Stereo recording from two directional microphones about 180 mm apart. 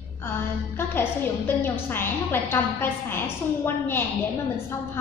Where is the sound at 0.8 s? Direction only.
10° left (ahead or behind).